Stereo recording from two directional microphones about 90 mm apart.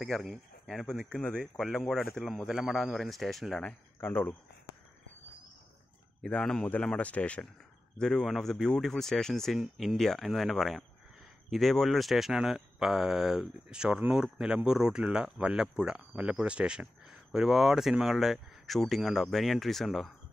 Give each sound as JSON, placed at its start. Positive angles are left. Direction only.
{"t": 0.3, "sound": "speech", "side_deg": 0}
{"t": 4.0, "sound": "speech", "side_deg": 20}
{"t": 6.2, "sound": "speech", "side_deg": 5}